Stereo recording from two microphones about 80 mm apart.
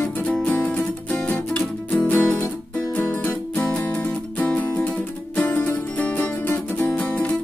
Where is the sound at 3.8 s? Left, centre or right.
Centre.